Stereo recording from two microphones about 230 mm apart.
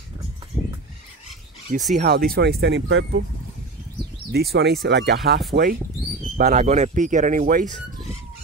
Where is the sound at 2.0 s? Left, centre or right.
Right.